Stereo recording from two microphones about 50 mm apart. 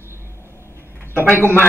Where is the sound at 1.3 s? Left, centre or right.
Left.